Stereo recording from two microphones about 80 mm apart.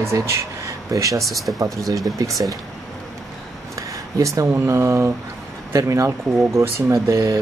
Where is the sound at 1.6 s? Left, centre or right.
Right.